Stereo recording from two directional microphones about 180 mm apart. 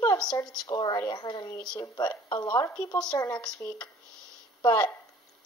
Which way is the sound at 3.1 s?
20° left (ahead or behind).